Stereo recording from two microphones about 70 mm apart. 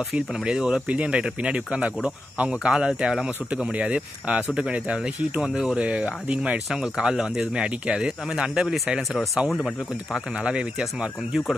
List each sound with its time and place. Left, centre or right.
0.1 s speech: centre
0.8 s speech: centre